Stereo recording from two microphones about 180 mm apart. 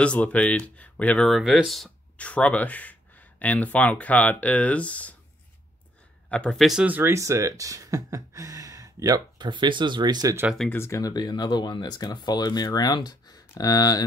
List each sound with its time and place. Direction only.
0.0 s speech: 5° left (ahead or behind)
6.3 s speech: 5° left (ahead or behind); by 10.4 s 20° right (ahead or behind)
10.4 s speech: centre (ahead or behind)
10.8 s speech: 20° left (ahead or behind)